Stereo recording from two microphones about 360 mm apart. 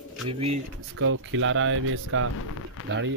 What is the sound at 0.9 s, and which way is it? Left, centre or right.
Speech, right.